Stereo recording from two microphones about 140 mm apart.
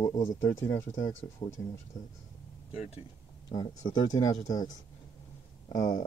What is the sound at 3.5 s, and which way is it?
Speech, 30° left (ahead or behind).